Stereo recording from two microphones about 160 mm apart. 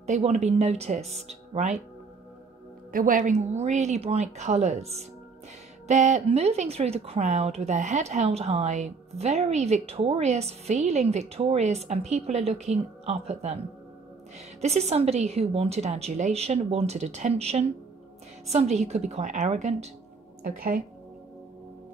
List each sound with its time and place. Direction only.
0.0 s speech: 45° right (ahead or behind)
2.9 s speech: 60° right (ahead or behind); by 13.6 s 40° right (ahead or behind)
14.6 s a woman's voice: 45° right (ahead or behind)